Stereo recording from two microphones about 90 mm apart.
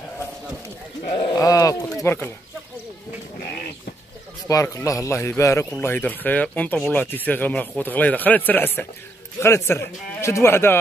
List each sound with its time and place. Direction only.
1.3 s speech: 40° left (ahead or behind)
2.0 s speech: 25° left (ahead or behind)
4.5 s speech: 40° left (ahead or behind)
5.8 s speech: 20° left (ahead or behind)